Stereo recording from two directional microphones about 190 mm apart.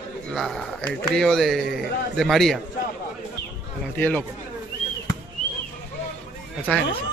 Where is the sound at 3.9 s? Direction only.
10° left (ahead or behind).